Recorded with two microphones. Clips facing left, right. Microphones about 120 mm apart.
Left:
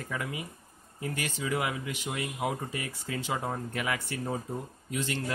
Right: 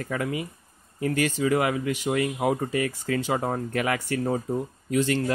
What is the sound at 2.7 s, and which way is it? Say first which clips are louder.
Speech: right 10 dB; 70° right (ahead or behind).